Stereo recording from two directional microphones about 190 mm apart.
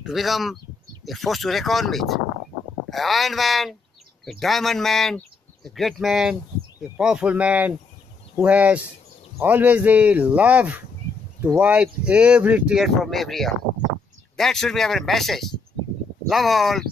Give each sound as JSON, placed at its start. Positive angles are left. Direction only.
{"t": 0.0, "sound": "speech", "side_deg": 0}